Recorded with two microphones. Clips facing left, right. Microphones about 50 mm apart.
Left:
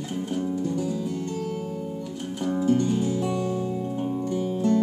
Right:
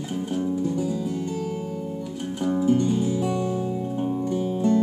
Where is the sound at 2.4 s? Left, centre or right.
Centre.